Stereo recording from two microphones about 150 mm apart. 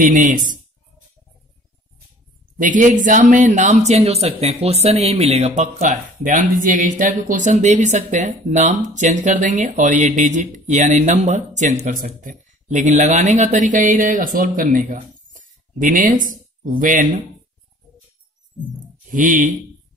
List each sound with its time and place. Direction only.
0.0 s speech: 60° right (ahead or behind)
2.6 s speech: 60° right (ahead or behind)
19.0 s speech: 60° right (ahead or behind)